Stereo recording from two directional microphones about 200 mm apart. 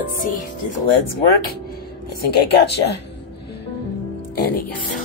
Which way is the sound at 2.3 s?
55° left (ahead or behind).